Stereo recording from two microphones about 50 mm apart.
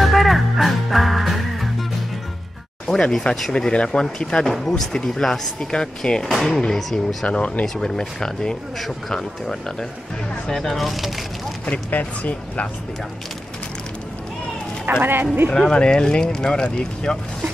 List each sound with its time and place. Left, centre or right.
0.0 s music: centre
2.9 s speech: centre
6.3 s speech: centre
7.2 s speech: left
7.6 s speech: centre
11.7 s speech: left
14.9 s speech: right
15.5 s speech: centre